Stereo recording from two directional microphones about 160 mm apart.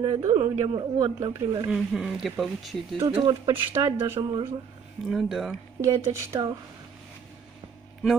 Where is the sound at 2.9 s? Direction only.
25° right (ahead or behind).